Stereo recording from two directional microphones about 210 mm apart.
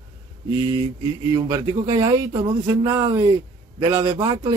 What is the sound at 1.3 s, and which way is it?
A man's voice, 20° right (ahead or behind).